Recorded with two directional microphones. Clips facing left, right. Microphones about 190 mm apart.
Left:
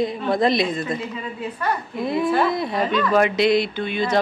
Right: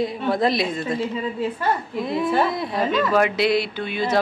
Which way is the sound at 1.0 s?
25° right (ahead or behind).